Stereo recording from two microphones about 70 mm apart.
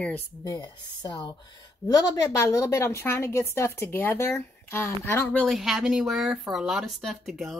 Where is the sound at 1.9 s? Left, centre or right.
Left.